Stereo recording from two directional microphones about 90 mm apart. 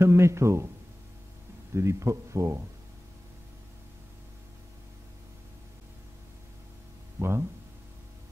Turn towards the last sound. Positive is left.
turn(degrees=-30)  # may be behind; listen again after turning